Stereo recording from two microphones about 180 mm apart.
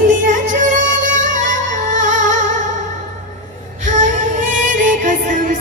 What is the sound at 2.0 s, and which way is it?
Music, 45° right (ahead or behind).